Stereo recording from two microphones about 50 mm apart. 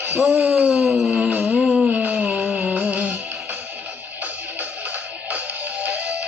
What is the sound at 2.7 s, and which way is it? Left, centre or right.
Music, right.